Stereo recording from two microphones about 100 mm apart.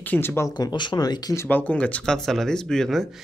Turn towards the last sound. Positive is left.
turn(degrees=0)  # may be behind; listen again after turning